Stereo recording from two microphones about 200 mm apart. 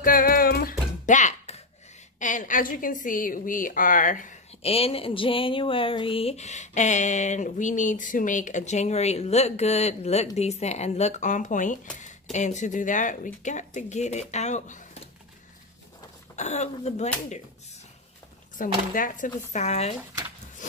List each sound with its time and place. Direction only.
0.0 s music: 45° left (ahead or behind)
2.1 s a woman's voice: 40° left (ahead or behind)
16.3 s a woman's voice: 35° left (ahead or behind)
18.6 s a woman's voice: 40° left (ahead or behind)